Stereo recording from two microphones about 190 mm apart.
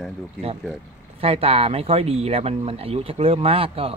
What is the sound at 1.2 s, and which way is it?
Speech, 30° right (ahead or behind).